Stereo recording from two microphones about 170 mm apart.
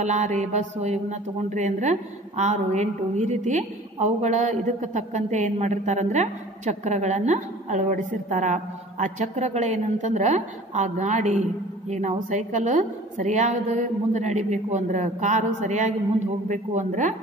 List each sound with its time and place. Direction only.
0.0 s a woman's voice: 45° right (ahead or behind)